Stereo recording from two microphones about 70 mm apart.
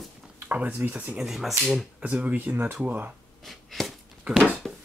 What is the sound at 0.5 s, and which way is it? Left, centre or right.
Speech, centre.